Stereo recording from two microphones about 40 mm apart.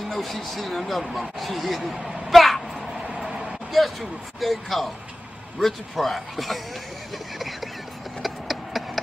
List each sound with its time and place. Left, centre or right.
0.0 s speech: centre
3.3 s vehicle: right
3.7 s speech: centre
8.2 s a sound: centre